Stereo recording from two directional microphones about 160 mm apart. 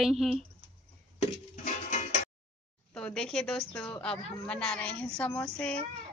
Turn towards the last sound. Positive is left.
turn(degrees=10)  # may be behind; listen again after turning